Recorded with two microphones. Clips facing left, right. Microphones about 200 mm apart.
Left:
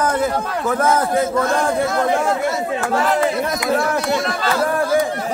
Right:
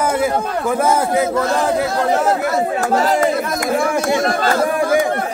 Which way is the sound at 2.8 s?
40° right (ahead or behind).